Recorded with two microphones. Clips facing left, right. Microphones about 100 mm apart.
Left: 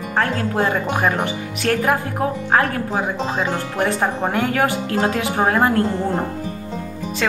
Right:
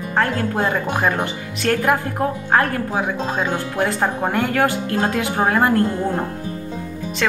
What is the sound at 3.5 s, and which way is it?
Speech, 10° right (ahead or behind).